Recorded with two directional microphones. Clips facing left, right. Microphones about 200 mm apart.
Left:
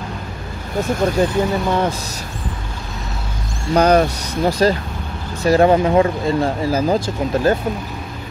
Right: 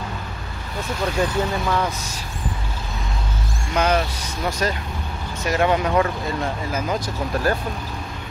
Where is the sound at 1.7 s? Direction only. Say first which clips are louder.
Left 4 dB; 30° left (ahead or behind).